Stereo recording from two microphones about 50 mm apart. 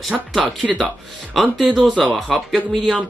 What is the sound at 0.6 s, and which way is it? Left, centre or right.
Speech, centre.